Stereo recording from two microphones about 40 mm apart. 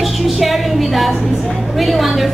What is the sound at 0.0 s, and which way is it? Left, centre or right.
Music, centre.